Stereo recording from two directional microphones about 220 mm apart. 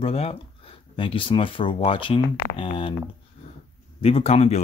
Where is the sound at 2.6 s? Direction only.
25° left (ahead or behind).